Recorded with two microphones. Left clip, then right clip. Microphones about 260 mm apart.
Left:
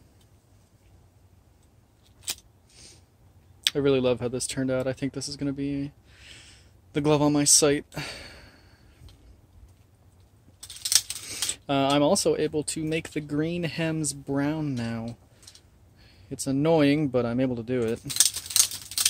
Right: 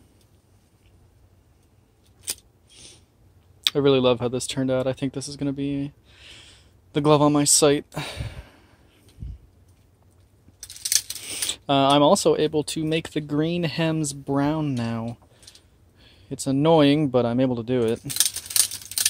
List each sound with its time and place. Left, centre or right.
2.7 s owl: centre
3.6 s speech: centre
11.2 s speech: centre